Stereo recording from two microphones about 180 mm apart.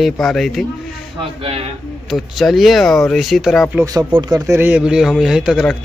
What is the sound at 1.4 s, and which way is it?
Speech, 35° right (ahead or behind).